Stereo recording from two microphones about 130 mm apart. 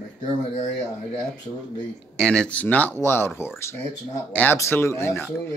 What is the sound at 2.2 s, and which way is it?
Speech, 5° left (ahead or behind).